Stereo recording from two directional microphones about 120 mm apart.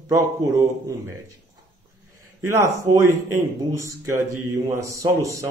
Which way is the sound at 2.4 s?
25° right (ahead or behind).